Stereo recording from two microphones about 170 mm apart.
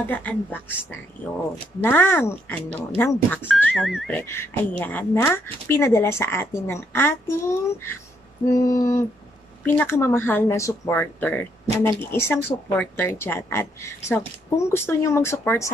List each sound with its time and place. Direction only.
0.0 s speech: 10° left (ahead or behind)
1.8 s speech: 10° left (ahead or behind)
3.7 s speech: centre (ahead or behind)
4.2 s speech: 15° left (ahead or behind)
8.5 s a sound: 20° left (ahead or behind)
9.7 s speech: 15° left (ahead or behind)